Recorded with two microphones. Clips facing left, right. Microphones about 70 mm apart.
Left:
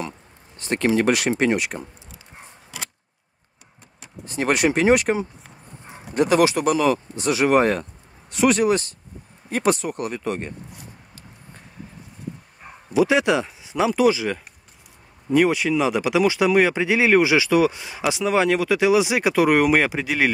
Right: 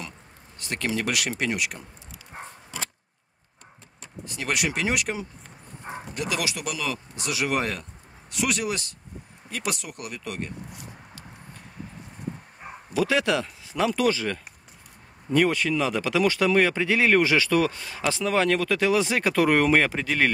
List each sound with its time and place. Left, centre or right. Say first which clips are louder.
0.6 s speech: left 8 dB; left
2.3 s a sound: right 7 dB; right
4.3 s speech: left 8 dB; left
12.9 s speech: left 5 dB; centre